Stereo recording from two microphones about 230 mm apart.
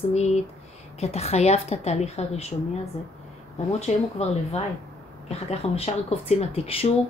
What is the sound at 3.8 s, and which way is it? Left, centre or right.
A woman's voice, left.